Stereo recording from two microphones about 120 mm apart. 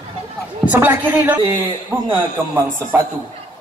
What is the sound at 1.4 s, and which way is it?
Speech, 45° right (ahead or behind).